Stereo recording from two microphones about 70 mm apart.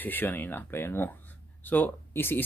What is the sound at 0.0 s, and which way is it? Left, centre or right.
Speech, left.